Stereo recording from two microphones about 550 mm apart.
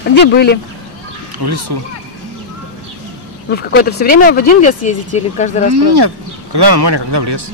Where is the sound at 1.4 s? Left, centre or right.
Right.